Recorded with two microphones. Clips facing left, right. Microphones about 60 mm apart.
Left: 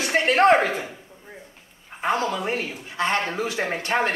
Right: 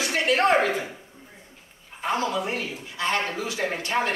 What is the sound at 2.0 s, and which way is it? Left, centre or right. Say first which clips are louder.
A man's voice: left 2 dB; left.